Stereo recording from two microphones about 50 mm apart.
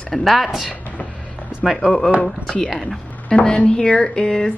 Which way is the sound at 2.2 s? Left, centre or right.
Centre.